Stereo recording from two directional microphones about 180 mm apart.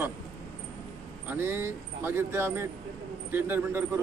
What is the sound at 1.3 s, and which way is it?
Speech, 10° right (ahead or behind).